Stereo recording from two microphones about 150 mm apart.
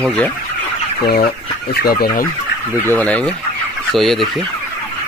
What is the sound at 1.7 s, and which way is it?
Fowl, 90° left.